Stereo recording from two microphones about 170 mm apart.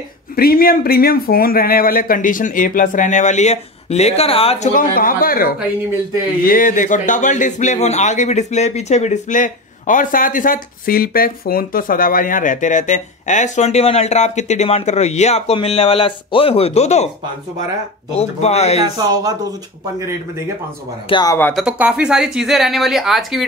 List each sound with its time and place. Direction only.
0.4 s speech: 60° left (ahead or behind); by 4.6 s 35° left (ahead or behind)
4.7 s speech: 55° left (ahead or behind); by 17.1 s 40° left (ahead or behind)
18.1 s speech: 40° left (ahead or behind)
18.9 s speech: 20° right (ahead or behind)
21.1 s speech: 25° left (ahead or behind)
21.5 s speech: 5° right (ahead or behind)